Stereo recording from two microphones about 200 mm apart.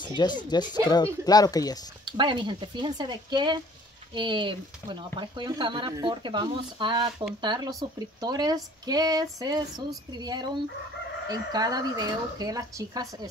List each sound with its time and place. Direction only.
0.0 s speech: 20° left (ahead or behind)
2.0 s speech: 25° right (ahead or behind)